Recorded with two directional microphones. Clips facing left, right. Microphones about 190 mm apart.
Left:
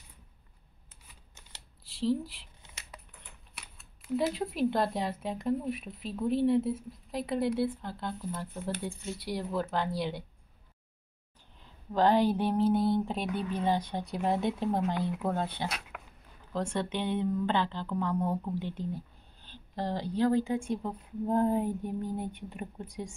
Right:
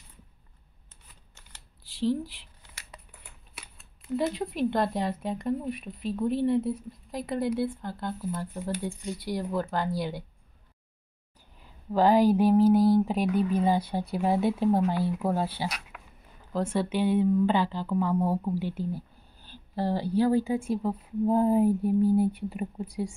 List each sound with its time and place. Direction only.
1.9 s speech: centre (ahead or behind)
2.6 s a sound: 20° left (ahead or behind)
3.5 s speech: centre (ahead or behind)
11.6 s a woman's voice: 10° right (ahead or behind)